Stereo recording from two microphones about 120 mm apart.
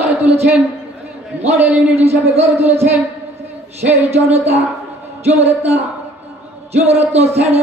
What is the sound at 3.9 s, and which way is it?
Speech, 60° right (ahead or behind).